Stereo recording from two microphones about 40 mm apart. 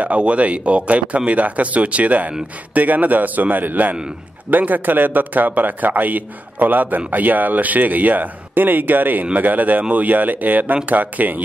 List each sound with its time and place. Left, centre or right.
0.0 s speech: right